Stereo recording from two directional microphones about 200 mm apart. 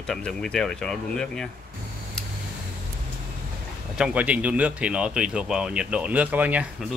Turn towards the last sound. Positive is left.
turn(degrees=-5)  # may be behind; listen again after turning